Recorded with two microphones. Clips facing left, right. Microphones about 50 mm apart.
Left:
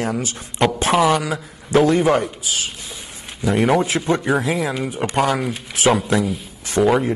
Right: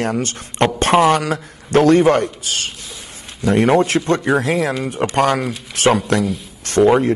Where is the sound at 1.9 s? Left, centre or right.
Centre.